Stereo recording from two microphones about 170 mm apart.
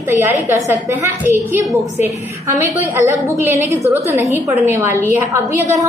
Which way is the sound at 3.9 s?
15° right (ahead or behind).